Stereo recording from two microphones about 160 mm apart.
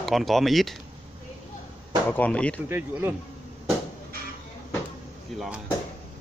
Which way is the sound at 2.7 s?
15° right (ahead or behind).